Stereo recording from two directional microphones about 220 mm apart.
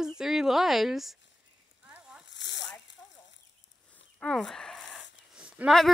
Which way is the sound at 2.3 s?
55° left (ahead or behind).